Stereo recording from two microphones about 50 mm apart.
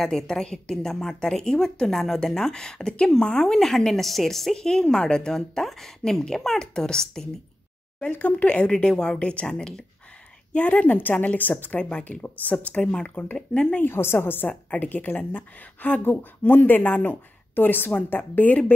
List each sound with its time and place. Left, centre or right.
0.0 s a woman's voice: centre
8.2 s a woman's voice: left
10.5 s a woman's voice: left
13.7 s a woman's voice: left
14.5 s a woman's voice: left